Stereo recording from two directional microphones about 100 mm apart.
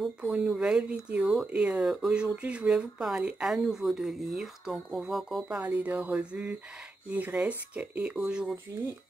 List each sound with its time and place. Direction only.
0.0 s speech: 10° right (ahead or behind)
5.6 s speech: 15° right (ahead or behind)